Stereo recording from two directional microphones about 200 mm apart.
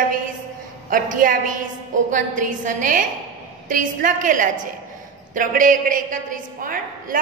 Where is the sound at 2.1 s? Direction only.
40° right (ahead or behind).